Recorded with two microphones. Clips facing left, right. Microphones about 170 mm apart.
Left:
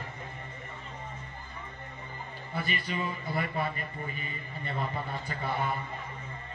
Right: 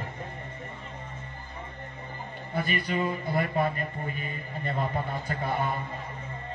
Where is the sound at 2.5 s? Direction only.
50° right (ahead or behind).